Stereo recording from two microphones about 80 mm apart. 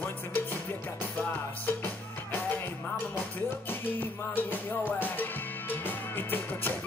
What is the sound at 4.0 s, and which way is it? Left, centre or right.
Music, left.